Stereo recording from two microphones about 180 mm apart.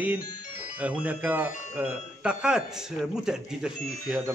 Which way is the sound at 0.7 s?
10° right (ahead or behind).